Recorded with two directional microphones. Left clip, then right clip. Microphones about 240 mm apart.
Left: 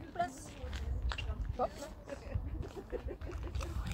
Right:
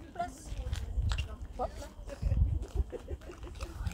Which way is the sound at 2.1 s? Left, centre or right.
Right.